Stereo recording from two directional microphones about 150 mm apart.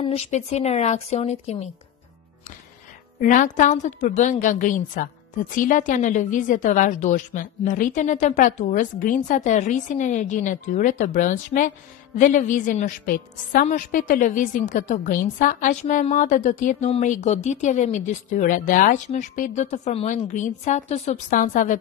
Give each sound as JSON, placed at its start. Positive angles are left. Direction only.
{"t": 0.0, "sound": "speech", "side_deg": 45}
{"t": 3.2, "sound": "a woman's voice", "side_deg": 60}